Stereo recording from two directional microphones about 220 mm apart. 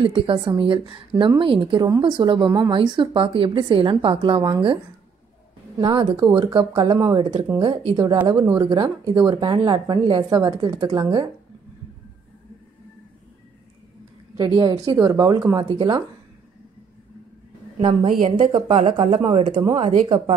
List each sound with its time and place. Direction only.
0.0 s a woman's voice: 20° right (ahead or behind)
5.8 s a woman's voice: 20° right (ahead or behind)
14.3 s a woman's voice: 20° right (ahead or behind)
17.7 s a woman's voice: 30° right (ahead or behind)